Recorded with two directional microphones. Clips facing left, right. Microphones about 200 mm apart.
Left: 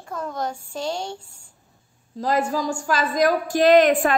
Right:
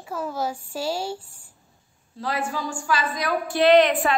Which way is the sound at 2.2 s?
40° left (ahead or behind).